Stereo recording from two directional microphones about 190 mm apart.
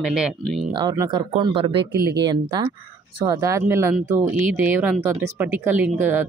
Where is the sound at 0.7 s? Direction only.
20° right (ahead or behind).